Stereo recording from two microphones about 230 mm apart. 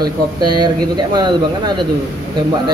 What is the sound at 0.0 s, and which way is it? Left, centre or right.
Speech, centre.